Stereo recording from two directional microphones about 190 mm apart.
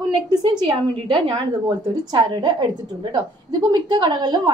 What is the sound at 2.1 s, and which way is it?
A woman's voice, 25° right (ahead or behind).